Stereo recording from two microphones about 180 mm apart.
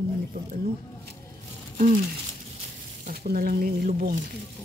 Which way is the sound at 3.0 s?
60° right (ahead or behind).